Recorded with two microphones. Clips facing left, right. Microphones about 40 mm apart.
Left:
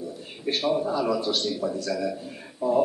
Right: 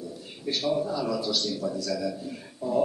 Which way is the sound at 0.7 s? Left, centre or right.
Left.